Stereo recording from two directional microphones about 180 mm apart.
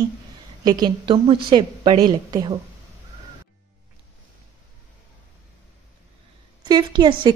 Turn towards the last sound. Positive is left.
turn(degrees=-25)  # may be behind; listen again after turning